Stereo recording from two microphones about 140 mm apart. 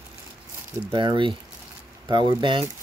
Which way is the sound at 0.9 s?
35° right (ahead or behind).